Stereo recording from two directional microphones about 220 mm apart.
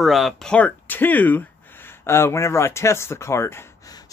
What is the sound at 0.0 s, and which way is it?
Speech, centre (ahead or behind).